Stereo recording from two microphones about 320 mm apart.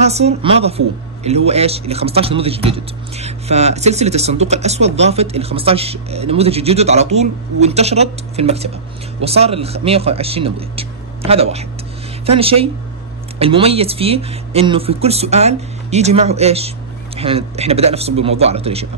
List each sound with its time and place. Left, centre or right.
0.0 s a woman's voice: centre